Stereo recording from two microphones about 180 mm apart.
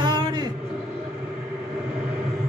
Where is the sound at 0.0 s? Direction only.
25° right (ahead or behind).